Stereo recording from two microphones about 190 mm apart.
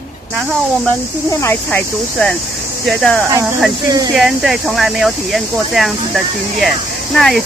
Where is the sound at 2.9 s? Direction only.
Centre (ahead or behind).